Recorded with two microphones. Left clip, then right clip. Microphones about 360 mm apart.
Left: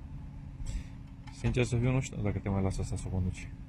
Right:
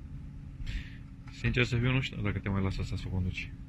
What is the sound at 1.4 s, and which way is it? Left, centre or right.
Speech, centre.